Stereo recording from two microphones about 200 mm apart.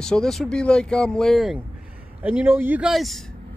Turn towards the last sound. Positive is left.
turn(degrees=0)  # may be behind; listen again after turning